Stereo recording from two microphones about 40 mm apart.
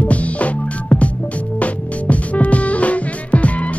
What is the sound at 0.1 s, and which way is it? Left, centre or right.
Music, left.